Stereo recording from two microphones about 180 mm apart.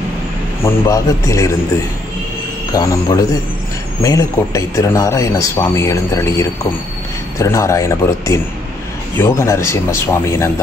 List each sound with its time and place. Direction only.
0.7 s speech: 15° left (ahead or behind)
2.7 s a man's voice: 20° left (ahead or behind)